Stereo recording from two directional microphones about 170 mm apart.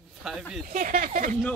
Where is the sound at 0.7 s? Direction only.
55° right (ahead or behind).